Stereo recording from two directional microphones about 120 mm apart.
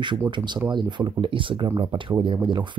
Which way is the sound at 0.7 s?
40° right (ahead or behind).